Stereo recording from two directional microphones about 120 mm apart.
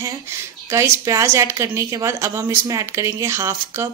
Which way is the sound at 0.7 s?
20° right (ahead or behind).